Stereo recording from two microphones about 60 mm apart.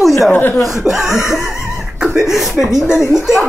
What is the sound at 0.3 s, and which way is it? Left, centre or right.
Speech, left.